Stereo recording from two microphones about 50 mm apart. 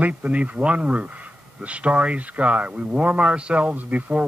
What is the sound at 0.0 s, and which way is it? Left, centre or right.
Speech, right.